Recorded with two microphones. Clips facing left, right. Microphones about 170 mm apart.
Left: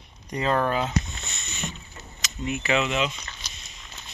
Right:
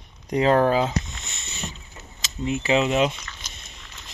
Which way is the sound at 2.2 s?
30° right (ahead or behind).